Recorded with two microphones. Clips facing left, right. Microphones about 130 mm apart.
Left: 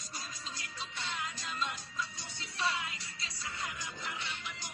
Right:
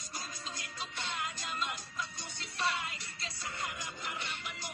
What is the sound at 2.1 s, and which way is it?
Music, 55° right (ahead or behind).